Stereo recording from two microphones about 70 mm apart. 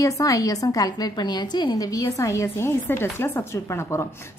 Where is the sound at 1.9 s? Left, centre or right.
Left.